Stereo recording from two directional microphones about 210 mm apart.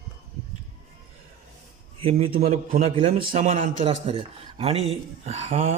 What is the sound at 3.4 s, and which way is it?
Speech, 35° right (ahead or behind).